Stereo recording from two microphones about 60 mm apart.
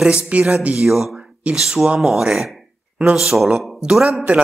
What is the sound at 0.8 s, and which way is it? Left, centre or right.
Speech, centre.